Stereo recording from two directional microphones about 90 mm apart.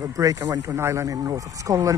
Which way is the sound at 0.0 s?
40° right (ahead or behind).